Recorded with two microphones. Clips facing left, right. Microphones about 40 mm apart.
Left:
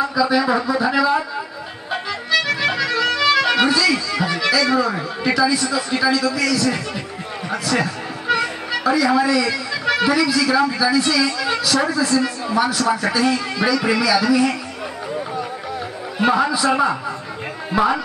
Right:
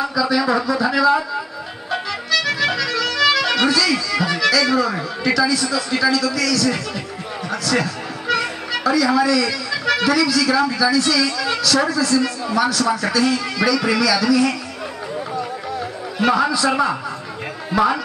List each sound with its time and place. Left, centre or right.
0.2 s speech: centre
2.4 s music: centre
5.5 s a man's voice: left
7.8 s a man's voice: centre
16.2 s a man's voice: centre